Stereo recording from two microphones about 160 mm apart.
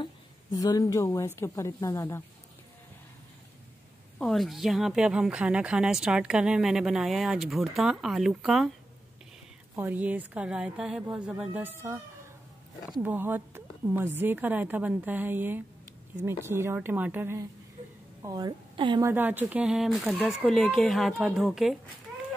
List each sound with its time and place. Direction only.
0.0 s a woman's voice: 25° left (ahead or behind)
4.2 s speech: centre (ahead or behind)
9.8 s speech: 10° right (ahead or behind)
13.0 s speech: 10° right (ahead or behind)
18.2 s a woman's voice: 25° right (ahead or behind)
19.0 s speech: 10° right (ahead or behind)